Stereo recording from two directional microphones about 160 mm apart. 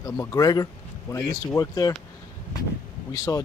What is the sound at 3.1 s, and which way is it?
Speech, 20° left (ahead or behind).